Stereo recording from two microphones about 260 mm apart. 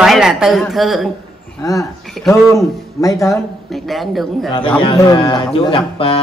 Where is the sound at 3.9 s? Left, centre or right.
Centre.